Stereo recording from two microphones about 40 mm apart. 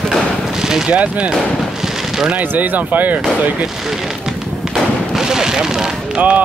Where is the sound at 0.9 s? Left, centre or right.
Right.